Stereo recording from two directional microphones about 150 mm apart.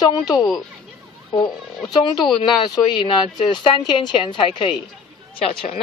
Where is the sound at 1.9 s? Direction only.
30° left (ahead or behind).